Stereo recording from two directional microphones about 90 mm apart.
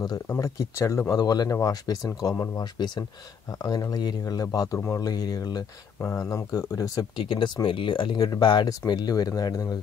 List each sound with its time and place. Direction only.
0.4 s speech: 35° left (ahead or behind)
1.1 s speech: 45° left (ahead or behind)
2.3 s speech: 35° left (ahead or behind)
2.6 s speech: 55° left (ahead or behind)
6.1 s speech: 35° left (ahead or behind)
7.2 s speech: 70° left (ahead or behind); by 9.8 s 45° left (ahead or behind)